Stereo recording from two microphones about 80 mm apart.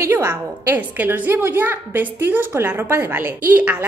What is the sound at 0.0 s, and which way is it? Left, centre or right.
A woman's voice, right.